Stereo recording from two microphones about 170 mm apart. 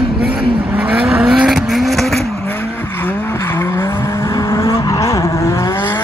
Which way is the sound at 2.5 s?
10° left (ahead or behind).